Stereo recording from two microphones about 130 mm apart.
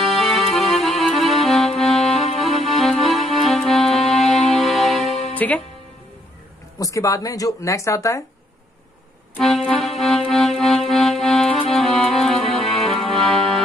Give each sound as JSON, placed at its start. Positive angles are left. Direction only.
{"t": 0.1, "sound": "music", "side_deg": 0}
{"t": 5.3, "sound": "music", "side_deg": 10}
{"t": 6.8, "sound": "speech", "side_deg": 25}
{"t": 9.4, "sound": "music", "side_deg": 0}
{"t": 13.1, "sound": "accordion", "side_deg": 0}